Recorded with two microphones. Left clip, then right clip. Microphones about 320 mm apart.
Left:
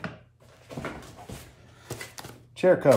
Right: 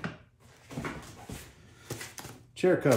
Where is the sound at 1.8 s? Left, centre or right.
Centre.